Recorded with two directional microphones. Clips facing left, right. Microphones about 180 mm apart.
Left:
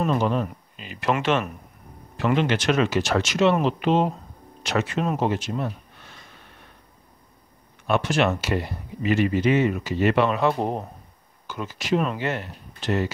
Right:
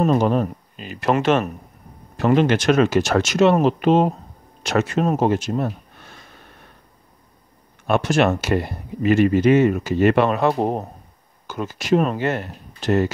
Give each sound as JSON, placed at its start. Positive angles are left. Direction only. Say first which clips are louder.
{"t": 0.0, "sound": "speech", "louder": "right 5 dB", "side_deg": -45}
{"t": 7.8, "sound": "speech", "louder": "right 4 dB", "side_deg": -45}